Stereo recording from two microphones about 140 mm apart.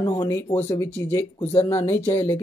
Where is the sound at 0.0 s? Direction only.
25° left (ahead or behind).